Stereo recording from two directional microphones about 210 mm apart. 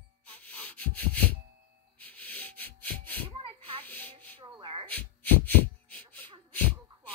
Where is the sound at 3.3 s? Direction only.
25° right (ahead or behind).